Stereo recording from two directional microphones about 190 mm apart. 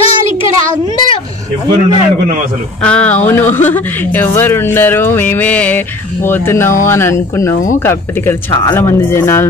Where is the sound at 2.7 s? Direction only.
5° left (ahead or behind).